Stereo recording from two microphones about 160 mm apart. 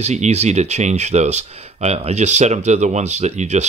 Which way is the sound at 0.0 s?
45° right (ahead or behind).